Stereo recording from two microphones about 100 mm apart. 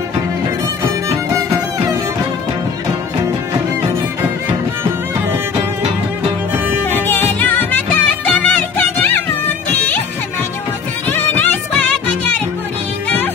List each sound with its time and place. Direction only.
6.9 s music: 20° left (ahead or behind)
11.1 s music: 20° left (ahead or behind)